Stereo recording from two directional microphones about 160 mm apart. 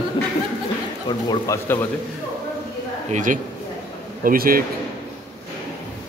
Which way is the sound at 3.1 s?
55° right (ahead or behind).